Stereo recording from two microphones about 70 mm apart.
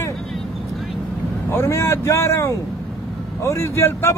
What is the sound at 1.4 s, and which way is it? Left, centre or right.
Speech, left.